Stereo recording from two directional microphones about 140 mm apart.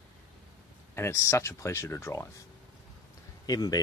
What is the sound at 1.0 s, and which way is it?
Speech, 20° left (ahead or behind).